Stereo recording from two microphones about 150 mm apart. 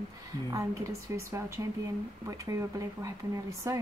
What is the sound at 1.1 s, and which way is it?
Speech, 20° right (ahead or behind).